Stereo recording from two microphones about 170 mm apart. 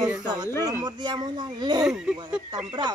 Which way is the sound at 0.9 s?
25° right (ahead or behind).